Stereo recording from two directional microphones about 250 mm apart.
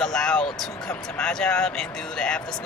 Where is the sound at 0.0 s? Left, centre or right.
Centre.